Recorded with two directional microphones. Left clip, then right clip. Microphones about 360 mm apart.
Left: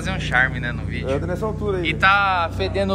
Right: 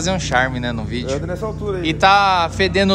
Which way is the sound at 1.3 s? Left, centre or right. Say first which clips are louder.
Even; centre.